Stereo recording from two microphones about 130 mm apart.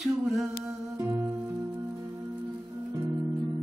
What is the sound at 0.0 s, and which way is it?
Humming, centre (ahead or behind).